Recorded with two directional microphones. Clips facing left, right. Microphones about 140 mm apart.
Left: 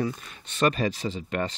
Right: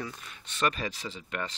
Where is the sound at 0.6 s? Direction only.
40° left (ahead or behind).